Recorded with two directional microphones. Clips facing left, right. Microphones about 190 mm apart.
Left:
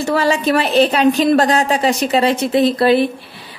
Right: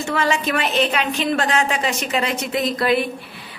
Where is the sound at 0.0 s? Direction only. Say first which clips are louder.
Left 5 dB; 35° left (ahead or behind).